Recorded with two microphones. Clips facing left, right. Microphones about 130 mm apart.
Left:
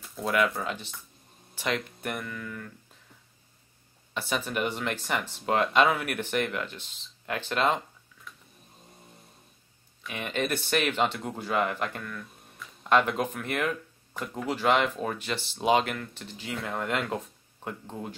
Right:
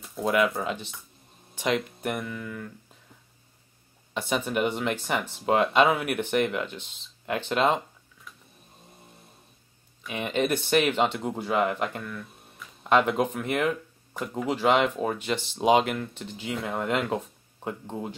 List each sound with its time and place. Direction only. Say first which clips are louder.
0.3 s speech: right 2 dB; centre (ahead or behind)
1.5 s speech: right 4 dB; 15° right (ahead or behind)
4.1 s speech: right 3 dB; 15° right (ahead or behind)
10.1 s speech: right 4 dB; 15° right (ahead or behind)